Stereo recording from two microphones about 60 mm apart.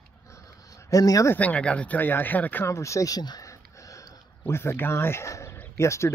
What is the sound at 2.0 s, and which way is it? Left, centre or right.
Speech, left.